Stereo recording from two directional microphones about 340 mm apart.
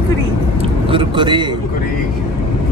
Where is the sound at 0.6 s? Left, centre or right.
Centre.